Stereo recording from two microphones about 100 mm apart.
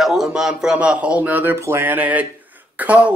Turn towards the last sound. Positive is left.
turn(degrees=-10)  # may be behind; listen again after turning